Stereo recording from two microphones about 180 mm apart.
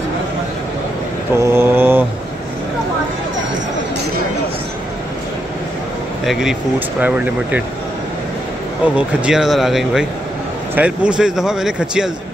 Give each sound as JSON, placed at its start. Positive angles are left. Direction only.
{"t": 1.3, "sound": "vehicle", "side_deg": -15}
{"t": 7.0, "sound": "speech", "side_deg": -10}
{"t": 8.9, "sound": "speech", "side_deg": -5}